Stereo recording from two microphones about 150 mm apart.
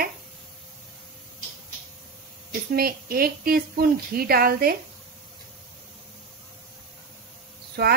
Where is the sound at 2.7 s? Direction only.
75° right (ahead or behind).